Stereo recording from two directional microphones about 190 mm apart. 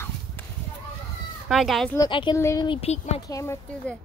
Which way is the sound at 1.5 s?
Centre (ahead or behind).